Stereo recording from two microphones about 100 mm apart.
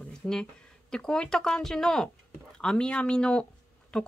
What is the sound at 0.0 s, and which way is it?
Speech, 10° left (ahead or behind).